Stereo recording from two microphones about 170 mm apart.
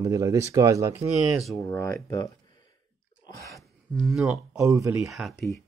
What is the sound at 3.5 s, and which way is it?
Speech, centre (ahead or behind).